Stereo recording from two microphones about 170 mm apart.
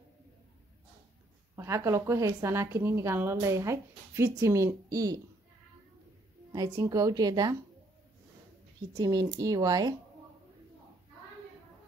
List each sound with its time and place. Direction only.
1.6 s a woman's voice: 15° right (ahead or behind)
6.5 s a woman's voice: 20° right (ahead or behind)
8.9 s a woman's voice: 20° right (ahead or behind)